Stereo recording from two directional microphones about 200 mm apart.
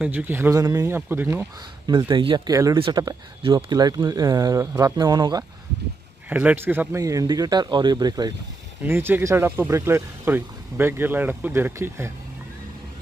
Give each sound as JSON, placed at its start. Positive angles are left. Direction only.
{"t": 0.0, "sound": "speech", "side_deg": -10}
{"t": 1.9, "sound": "speech", "side_deg": -20}
{"t": 6.2, "sound": "speech", "side_deg": -5}